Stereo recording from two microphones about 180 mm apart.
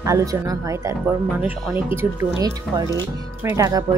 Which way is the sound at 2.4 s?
20° right (ahead or behind).